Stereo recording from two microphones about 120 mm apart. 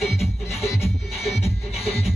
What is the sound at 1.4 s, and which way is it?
Music, 55° left (ahead or behind).